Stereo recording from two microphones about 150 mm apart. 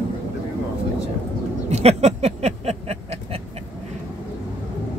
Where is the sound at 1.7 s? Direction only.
45° right (ahead or behind).